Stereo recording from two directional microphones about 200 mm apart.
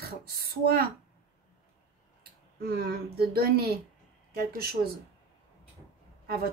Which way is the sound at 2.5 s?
50° right (ahead or behind).